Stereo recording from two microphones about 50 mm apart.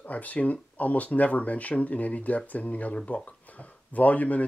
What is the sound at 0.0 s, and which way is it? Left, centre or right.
Speech, left.